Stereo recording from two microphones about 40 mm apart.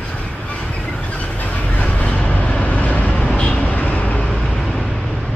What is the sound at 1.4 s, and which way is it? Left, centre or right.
Vehicle, left.